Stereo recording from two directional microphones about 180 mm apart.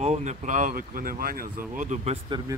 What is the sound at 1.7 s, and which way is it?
Speech, 40° right (ahead or behind).